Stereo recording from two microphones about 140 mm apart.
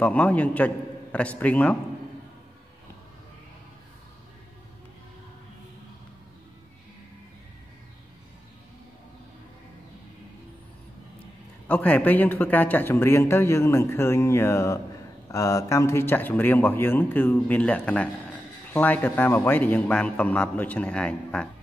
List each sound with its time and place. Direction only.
0.0 s speech: 10° left (ahead or behind)
11.6 s speech: 10° left (ahead or behind)